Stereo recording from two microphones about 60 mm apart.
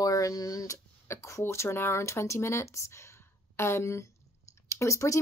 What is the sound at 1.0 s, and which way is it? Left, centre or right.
Speech, left.